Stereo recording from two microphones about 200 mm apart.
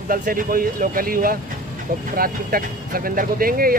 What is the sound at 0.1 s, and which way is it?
Speech, 45° right (ahead or behind).